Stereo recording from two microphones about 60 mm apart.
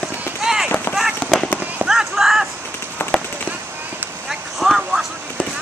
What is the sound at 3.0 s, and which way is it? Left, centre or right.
Firecracker, left.